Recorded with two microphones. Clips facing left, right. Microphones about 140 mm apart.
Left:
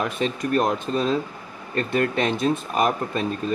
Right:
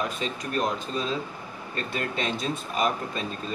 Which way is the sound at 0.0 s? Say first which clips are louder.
Left 6 dB; 50° left (ahead or behind).